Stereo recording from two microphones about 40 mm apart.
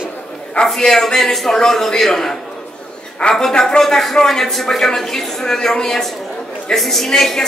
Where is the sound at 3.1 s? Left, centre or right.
Left.